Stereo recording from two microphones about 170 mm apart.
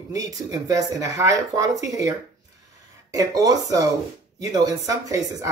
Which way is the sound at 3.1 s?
20° right (ahead or behind).